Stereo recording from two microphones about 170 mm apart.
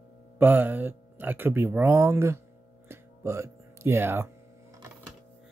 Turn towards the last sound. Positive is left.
turn(degrees=-15)  # may be behind; listen again after turning